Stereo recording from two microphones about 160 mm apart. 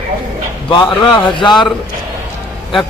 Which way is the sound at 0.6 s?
25° left (ahead or behind).